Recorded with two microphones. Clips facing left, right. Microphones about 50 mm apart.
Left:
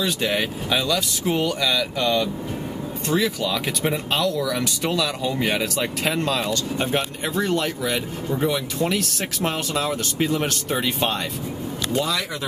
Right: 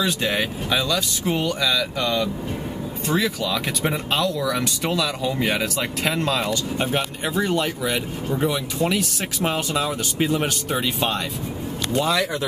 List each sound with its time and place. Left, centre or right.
0.0 s speech: centre
12.0 s speech: right